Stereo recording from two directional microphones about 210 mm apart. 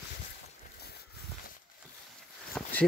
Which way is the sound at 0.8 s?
50° left (ahead or behind).